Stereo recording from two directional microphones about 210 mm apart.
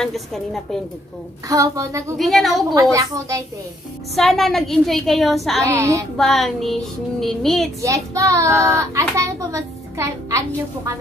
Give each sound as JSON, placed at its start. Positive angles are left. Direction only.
{"t": 0.0, "sound": "child singing", "side_deg": 0}
{"t": 1.5, "sound": "a child's voice", "side_deg": -15}
{"t": 2.1, "sound": "child singing", "side_deg": 0}
{"t": 2.7, "sound": "a child's voice", "side_deg": -15}
{"t": 4.1, "sound": "child singing", "side_deg": 0}
{"t": 5.6, "sound": "a child's voice", "side_deg": -15}
{"t": 6.1, "sound": "child singing", "side_deg": 0}
{"t": 7.8, "sound": "a child's voice", "side_deg": -15}